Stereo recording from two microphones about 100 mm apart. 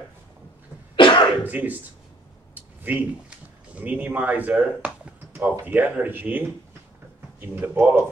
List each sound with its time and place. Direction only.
0.9 s cough: 60° left (ahead or behind)
1.4 s speech: 15° right (ahead or behind)